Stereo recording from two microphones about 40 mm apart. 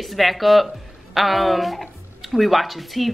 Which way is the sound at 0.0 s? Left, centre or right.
Centre.